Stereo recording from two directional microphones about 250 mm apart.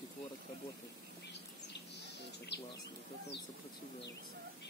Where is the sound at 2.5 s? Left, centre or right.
Left.